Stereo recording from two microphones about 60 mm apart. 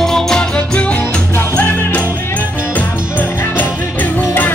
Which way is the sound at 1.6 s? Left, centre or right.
Left.